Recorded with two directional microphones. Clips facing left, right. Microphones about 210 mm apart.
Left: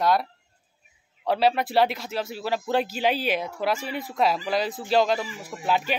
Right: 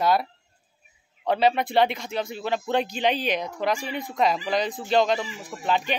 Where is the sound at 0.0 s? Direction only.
Centre (ahead or behind).